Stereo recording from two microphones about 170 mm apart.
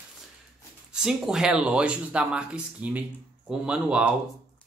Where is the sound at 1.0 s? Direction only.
5° right (ahead or behind).